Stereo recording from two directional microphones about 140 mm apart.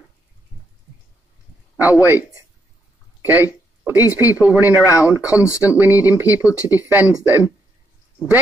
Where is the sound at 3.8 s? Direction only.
15° right (ahead or behind).